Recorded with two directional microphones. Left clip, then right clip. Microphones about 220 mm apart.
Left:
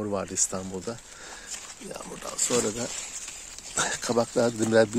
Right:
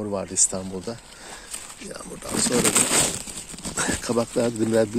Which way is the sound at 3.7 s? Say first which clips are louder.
Right 2 dB; 10° left (ahead or behind).